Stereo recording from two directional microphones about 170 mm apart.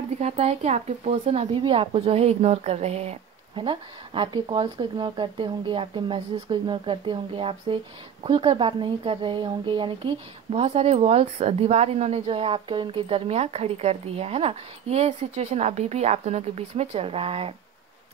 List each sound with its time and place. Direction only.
0.2 s speech: 40° right (ahead or behind)